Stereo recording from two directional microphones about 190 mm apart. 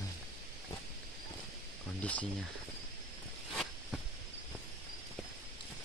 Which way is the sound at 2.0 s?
5° left (ahead or behind).